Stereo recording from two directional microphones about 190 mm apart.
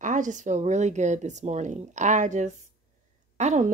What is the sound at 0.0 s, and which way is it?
A woman's voice, 40° right (ahead or behind).